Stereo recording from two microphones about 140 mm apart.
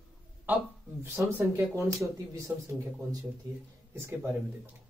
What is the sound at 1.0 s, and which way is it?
Speech, 15° right (ahead or behind).